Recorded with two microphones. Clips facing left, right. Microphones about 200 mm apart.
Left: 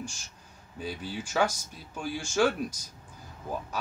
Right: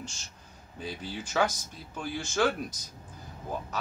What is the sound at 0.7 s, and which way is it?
Speech, 10° left (ahead or behind).